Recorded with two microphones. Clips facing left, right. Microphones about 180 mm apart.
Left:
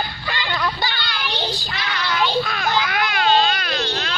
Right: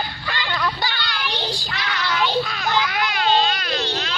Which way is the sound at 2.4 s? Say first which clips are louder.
Left 1 dB; 55° left (ahead or behind).